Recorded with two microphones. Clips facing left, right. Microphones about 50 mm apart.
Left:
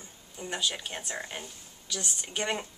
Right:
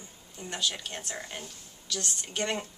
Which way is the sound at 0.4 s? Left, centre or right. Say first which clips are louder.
Left 1 dB; centre.